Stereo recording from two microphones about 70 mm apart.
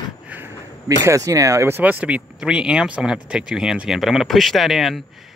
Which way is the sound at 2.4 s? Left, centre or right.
Centre.